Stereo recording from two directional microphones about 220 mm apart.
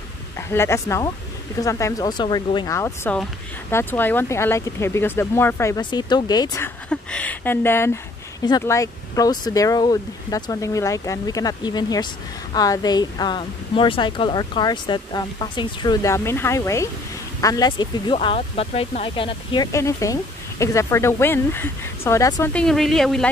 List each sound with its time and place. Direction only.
0.5 s speech: 10° left (ahead or behind)